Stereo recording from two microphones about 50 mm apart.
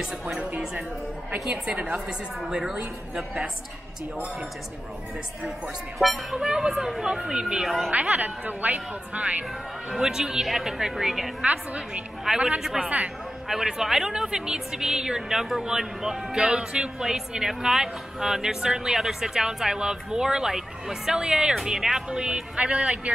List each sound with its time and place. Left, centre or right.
0.0 s a woman's voice: centre
1.9 s a woman's voice: centre
5.9 s a woman's voice: centre
7.6 s speech: centre
7.9 s a woman's voice: right
9.8 s a woman's voice: centre
11.4 s speech: right
12.4 s a woman's voice: centre